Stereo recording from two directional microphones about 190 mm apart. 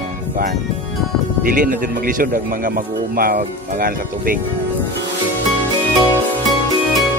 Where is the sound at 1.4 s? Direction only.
50° right (ahead or behind).